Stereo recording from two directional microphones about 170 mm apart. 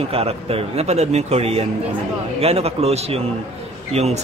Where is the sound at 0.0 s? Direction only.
35° right (ahead or behind).